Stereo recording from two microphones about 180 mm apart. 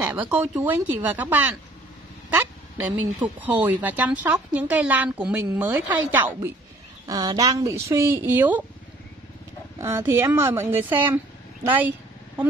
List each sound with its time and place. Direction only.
0.0 s speech: 10° right (ahead or behind)
9.8 s speech: 15° right (ahead or behind)